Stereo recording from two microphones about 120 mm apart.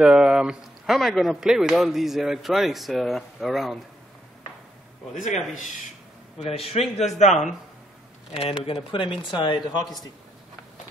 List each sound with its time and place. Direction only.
0.0 s speech: 5° right (ahead or behind)
5.1 s speech: 90° left
6.4 s a man's voice: 60° left (ahead or behind)
8.6 s speech: 45° left (ahead or behind)